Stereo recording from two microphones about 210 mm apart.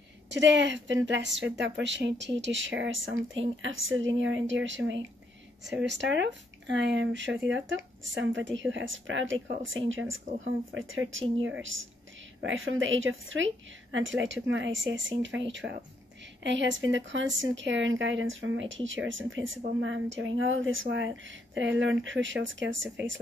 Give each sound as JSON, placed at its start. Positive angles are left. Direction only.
{"t": 0.3, "sound": "speech", "side_deg": -60}
{"t": 12.4, "sound": "speech", "side_deg": -65}